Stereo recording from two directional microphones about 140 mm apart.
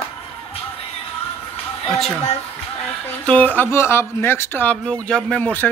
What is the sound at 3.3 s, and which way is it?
Speech, 10° left (ahead or behind).